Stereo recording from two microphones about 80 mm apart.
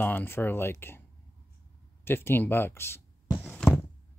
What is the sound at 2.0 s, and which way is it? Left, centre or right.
Speech, left.